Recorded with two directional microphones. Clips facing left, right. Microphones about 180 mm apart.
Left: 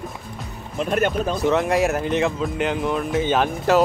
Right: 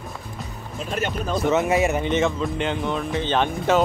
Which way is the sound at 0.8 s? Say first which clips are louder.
Left 6 dB; 55° left (ahead or behind).